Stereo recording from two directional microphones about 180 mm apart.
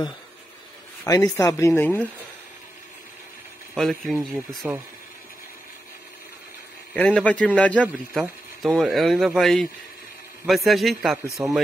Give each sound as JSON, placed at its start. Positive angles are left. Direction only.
{"t": 1.0, "sound": "speech", "side_deg": 20}
{"t": 3.7, "sound": "speech", "side_deg": 0}
{"t": 6.9, "sound": "speech", "side_deg": 5}
{"t": 11.4, "sound": "speech", "side_deg": -20}